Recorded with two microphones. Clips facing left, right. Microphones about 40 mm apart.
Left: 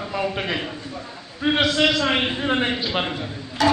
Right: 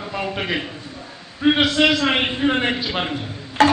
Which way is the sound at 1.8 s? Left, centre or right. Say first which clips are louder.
Right 2 dB; right.